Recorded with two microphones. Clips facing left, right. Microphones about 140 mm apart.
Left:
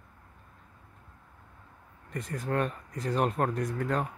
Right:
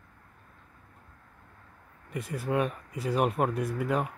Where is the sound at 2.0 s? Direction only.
10° right (ahead or behind).